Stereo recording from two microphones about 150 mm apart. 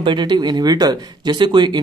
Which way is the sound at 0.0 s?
30° right (ahead or behind).